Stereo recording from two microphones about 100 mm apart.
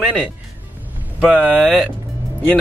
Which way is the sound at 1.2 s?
10° right (ahead or behind).